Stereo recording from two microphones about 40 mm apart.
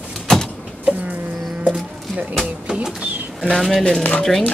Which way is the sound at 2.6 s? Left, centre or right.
Right.